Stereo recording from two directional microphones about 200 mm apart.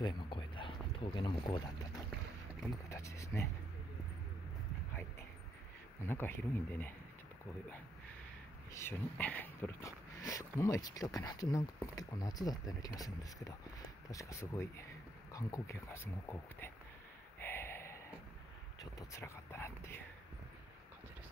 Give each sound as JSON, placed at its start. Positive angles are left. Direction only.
{"t": 0.0, "sound": "a sound", "side_deg": 25}
{"t": 2.9, "sound": "speech", "side_deg": 15}
{"t": 6.0, "sound": "speech", "side_deg": 10}
{"t": 8.7, "sound": "speech", "side_deg": 10}
{"t": 17.4, "sound": "a sound", "side_deg": 10}
{"t": 18.8, "sound": "speech", "side_deg": 15}